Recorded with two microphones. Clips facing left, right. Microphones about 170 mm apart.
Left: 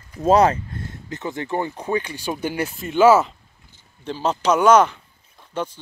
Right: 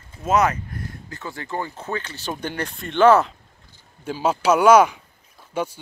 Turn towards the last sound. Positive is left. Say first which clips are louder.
# right 1 dB
turn(degrees=-10)  # may be behind; listen again after turning